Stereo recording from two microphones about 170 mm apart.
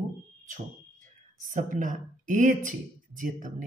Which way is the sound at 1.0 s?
50° right (ahead or behind).